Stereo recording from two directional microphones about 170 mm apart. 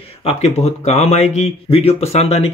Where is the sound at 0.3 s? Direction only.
40° left (ahead or behind).